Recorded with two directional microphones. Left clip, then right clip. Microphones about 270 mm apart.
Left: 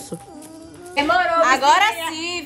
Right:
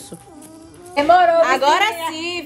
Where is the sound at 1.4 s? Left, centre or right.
Centre.